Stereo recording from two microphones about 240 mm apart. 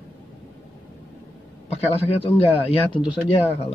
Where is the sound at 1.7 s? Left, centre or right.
Left.